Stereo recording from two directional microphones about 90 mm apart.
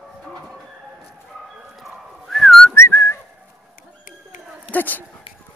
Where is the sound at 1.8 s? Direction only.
5° left (ahead or behind).